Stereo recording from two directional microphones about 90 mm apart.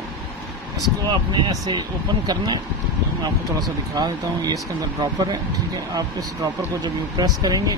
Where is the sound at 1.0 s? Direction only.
55° right (ahead or behind).